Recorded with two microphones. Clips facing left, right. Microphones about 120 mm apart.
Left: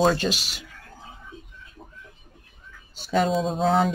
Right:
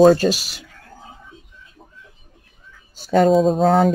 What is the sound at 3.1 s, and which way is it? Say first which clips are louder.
Speech: right 8 dB; 50° right (ahead or behind).